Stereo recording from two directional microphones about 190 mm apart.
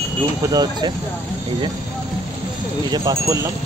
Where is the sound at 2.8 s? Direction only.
20° right (ahead or behind).